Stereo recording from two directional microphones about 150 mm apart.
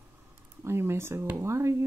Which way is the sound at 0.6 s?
15° right (ahead or behind).